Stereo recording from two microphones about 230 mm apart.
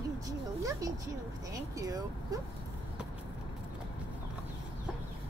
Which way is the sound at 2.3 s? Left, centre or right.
Centre.